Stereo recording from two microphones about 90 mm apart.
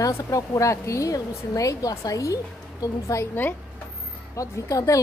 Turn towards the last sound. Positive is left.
turn(degrees=40)  # may be behind; listen again after turning